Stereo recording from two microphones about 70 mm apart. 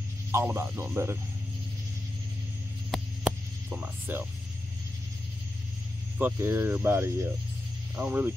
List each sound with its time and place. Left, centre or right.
0.3 s speech: right
2.9 s hum: centre
3.3 s hum: right
6.1 s speech: right